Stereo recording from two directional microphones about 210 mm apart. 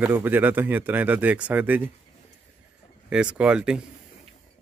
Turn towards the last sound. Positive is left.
turn(degrees=-5)  # may be behind; listen again after turning